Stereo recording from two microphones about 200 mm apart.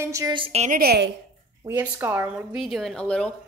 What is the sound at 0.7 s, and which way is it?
Speech, 50° right (ahead or behind).